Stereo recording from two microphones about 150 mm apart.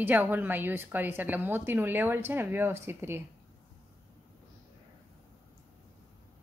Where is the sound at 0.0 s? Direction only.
10° right (ahead or behind).